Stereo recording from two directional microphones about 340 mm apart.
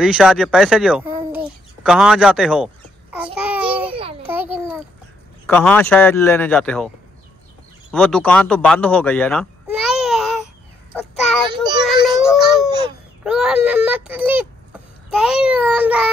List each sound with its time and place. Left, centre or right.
0.0 s speech: centre
3.3 s babbling: centre
3.9 s babbling: centre
5.5 s speech: centre
7.9 s a sound: centre
11.8 s music: centre
12.4 s baby cry: centre
13.2 s a sound: centre
15.0 s speech: centre